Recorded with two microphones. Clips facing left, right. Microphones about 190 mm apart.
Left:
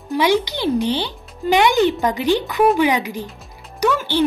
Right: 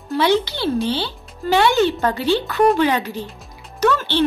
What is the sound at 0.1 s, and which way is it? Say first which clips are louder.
Speech: even; 15° left (ahead or behind).